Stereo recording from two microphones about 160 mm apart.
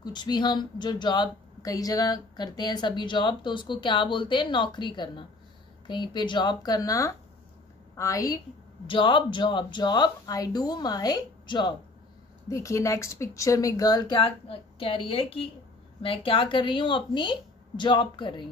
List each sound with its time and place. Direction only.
0.0 s a woman's voice: 25° left (ahead or behind)
8.8 s a woman's voice: 30° left (ahead or behind)